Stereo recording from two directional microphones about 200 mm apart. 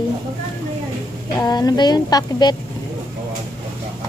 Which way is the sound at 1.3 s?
20° left (ahead or behind).